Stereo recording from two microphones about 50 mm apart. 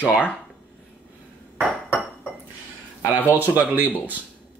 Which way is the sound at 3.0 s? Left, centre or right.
Right.